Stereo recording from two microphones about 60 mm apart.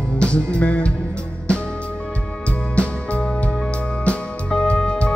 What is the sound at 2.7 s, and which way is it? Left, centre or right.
Music, centre.